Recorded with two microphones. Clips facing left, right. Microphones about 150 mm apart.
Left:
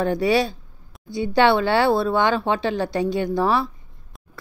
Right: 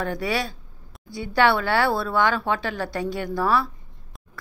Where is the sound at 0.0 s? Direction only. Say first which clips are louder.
Left 7 dB; 25° left (ahead or behind).